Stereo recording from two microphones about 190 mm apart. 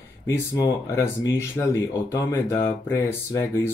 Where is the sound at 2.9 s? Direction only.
15° left (ahead or behind).